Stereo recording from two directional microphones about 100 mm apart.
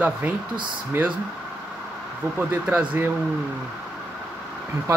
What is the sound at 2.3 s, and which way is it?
Speech, 15° right (ahead or behind).